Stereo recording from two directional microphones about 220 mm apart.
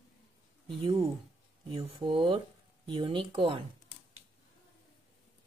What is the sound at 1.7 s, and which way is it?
Speech, 25° right (ahead or behind).